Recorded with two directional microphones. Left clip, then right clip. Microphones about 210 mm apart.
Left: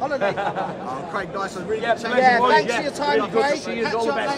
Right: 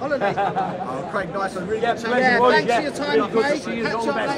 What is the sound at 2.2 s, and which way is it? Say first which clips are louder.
A man's voice: left 1 dB; 30° left (ahead or behind).